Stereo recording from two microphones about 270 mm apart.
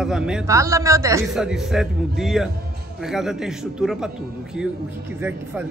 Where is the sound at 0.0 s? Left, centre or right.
Centre.